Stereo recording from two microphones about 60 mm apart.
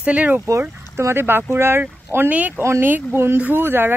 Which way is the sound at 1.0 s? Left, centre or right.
Right.